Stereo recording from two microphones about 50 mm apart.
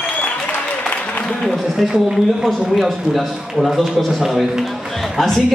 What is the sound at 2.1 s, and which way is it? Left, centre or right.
A man's voice, centre.